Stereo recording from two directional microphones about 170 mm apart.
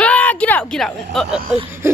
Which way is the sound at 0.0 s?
10° left (ahead or behind).